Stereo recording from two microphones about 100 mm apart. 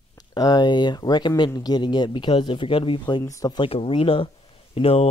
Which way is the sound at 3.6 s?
60° left (ahead or behind).